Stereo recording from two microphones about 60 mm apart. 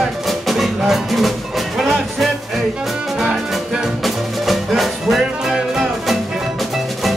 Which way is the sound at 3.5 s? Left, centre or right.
Centre.